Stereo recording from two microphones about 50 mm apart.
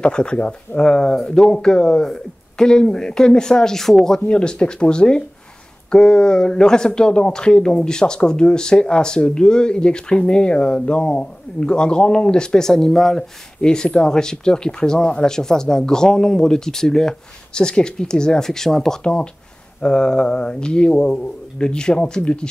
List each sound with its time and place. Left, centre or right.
0.0 s speech: centre